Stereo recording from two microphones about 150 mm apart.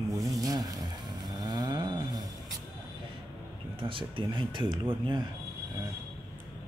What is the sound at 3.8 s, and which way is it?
Speech, 35° right (ahead or behind).